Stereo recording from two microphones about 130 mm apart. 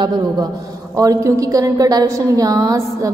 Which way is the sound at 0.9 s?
25° right (ahead or behind).